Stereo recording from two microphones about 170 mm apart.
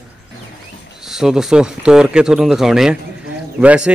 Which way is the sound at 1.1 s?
Centre (ahead or behind).